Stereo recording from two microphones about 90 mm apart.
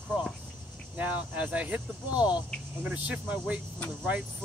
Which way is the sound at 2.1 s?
55° left (ahead or behind).